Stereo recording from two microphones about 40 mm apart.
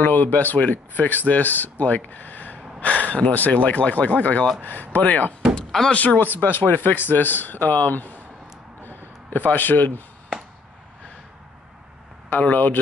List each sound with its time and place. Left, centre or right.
0.0 s speech: left
2.8 s a sound: left
3.3 s speech: left
8.8 s a sound: left
9.4 s speech: left
12.3 s speech: left